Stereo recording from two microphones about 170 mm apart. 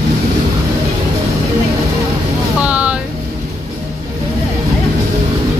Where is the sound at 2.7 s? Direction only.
5° right (ahead or behind).